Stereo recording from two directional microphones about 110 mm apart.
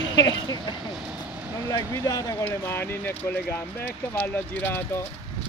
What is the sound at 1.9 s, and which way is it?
Speech, 30° left (ahead or behind).